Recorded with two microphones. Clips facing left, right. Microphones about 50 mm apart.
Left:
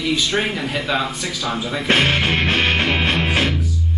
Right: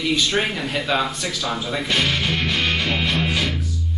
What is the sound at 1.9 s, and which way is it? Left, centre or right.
Music, left.